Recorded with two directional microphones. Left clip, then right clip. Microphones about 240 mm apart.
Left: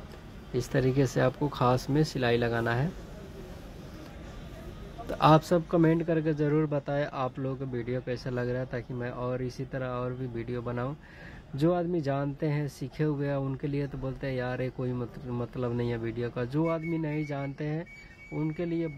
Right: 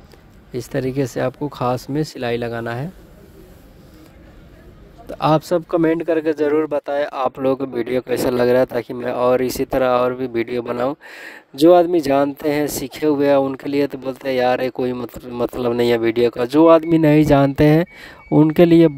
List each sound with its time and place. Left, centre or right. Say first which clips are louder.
0.5 s speech: right 5 dB; right
5.1 s speech: right 6 dB; right